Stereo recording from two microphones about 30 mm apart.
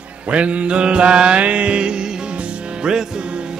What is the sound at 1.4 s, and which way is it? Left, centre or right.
Music, right.